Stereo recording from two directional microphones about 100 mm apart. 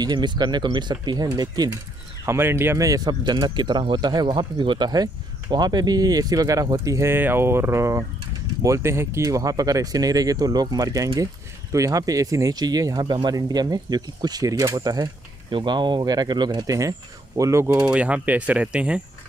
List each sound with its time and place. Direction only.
0.0 s speech: 45° right (ahead or behind)
2.2 s speech: 25° right (ahead or behind); by 15.0 s 40° right (ahead or behind)
15.5 s speech: 50° right (ahead or behind); by 17.7 s 30° right (ahead or behind)
17.8 s speech: 10° right (ahead or behind)